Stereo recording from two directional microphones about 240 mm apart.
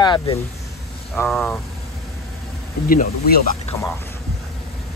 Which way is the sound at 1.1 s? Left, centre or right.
Centre.